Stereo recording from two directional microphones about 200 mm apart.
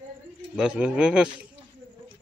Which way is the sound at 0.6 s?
5° right (ahead or behind).